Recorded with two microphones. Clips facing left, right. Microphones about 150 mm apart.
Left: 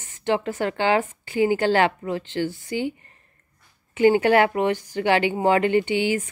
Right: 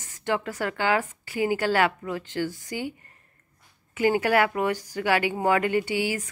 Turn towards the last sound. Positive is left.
turn(degrees=25)  # may be behind; listen again after turning